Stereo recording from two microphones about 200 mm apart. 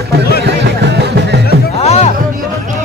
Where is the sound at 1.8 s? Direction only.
30° left (ahead or behind).